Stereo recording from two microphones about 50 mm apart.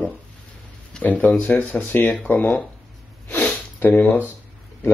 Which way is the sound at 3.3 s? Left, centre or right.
Left.